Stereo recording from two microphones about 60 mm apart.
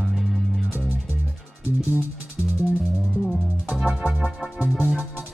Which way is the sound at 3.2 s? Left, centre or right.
Centre.